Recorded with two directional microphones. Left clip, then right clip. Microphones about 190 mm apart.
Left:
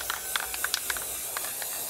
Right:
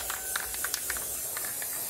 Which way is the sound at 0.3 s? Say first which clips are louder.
Left 4 dB; 35° left (ahead or behind).